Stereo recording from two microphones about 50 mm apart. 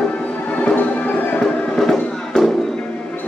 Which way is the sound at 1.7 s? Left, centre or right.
Centre.